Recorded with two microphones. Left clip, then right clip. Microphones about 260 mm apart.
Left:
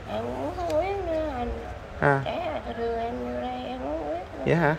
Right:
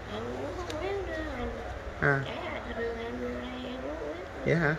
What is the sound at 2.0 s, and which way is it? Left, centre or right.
Speech, centre.